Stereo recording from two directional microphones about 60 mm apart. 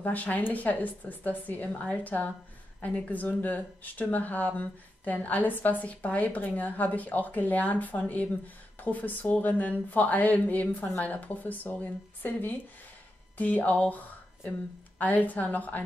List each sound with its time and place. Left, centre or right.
0.0 s speech: left
15.0 s speech: left